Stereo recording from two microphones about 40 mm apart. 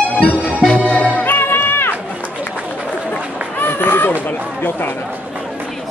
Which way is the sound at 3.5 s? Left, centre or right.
Left.